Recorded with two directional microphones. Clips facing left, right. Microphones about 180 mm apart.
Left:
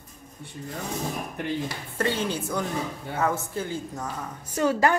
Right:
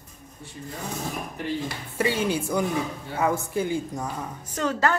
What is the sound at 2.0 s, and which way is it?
Speech, 10° right (ahead or behind).